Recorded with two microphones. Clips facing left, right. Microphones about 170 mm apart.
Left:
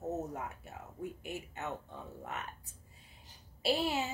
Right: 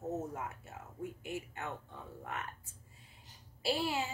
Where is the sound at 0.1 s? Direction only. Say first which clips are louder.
Right 1 dB; 20° left (ahead or behind).